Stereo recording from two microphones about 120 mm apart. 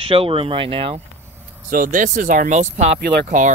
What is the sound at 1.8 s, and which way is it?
Speech, 90° right.